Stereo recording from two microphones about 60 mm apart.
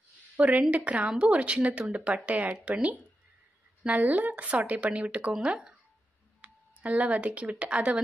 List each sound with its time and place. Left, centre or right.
0.4 s speech: right
6.4 s speech: right